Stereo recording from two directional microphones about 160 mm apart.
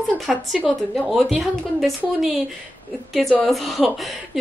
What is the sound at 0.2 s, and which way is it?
Speech, centre (ahead or behind).